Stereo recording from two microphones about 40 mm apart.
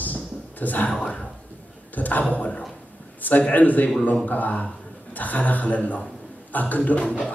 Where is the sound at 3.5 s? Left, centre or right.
Left.